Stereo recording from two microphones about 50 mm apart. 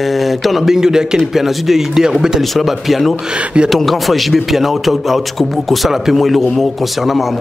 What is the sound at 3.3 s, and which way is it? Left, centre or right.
Speech, right.